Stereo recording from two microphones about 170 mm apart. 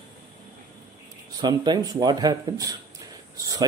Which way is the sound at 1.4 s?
25° right (ahead or behind).